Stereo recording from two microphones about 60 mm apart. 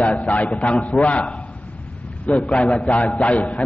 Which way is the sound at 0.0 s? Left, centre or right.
Left.